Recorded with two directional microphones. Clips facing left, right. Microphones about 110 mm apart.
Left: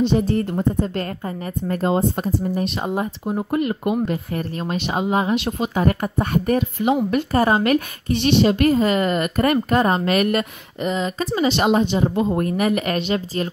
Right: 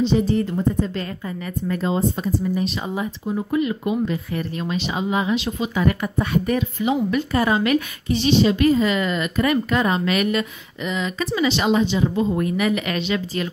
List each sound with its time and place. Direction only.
0.0 s speech: 55° left (ahead or behind)